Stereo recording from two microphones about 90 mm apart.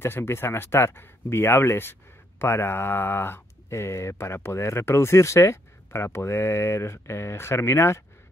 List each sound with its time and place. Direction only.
0.0 s speech: 30° left (ahead or behind)